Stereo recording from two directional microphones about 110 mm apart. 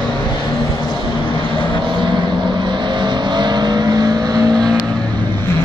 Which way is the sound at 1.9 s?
45° right (ahead or behind).